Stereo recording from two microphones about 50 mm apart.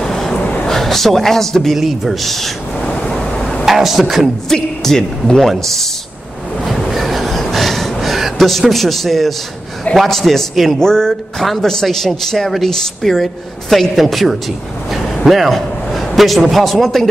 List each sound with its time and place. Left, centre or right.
0.0 s a sound: centre
0.7 s a man's voice: centre
2.8 s vehicle: centre
3.6 s a man's voice: centre
4.5 s a woman's voice: centre
6.6 s a sound: centre
9.9 s a man's voice: centre
15.2 s a sound: centre
16.2 s a man's voice: centre